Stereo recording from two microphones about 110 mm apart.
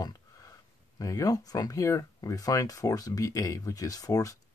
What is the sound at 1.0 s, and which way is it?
Speech, 30° left (ahead or behind).